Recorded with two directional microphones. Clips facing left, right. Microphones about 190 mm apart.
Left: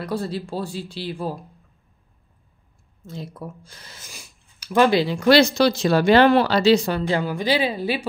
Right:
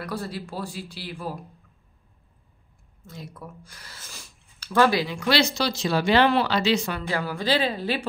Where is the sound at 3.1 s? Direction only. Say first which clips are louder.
Left 6 dB; 30° left (ahead or behind).